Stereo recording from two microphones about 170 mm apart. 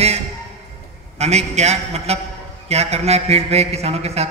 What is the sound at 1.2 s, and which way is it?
A man's voice, 40° right (ahead or behind).